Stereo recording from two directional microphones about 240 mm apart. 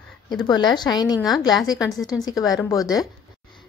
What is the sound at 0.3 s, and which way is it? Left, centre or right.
Speech, centre.